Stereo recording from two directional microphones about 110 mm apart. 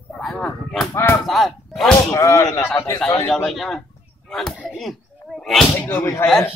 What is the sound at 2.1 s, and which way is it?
Speech, 30° left (ahead or behind).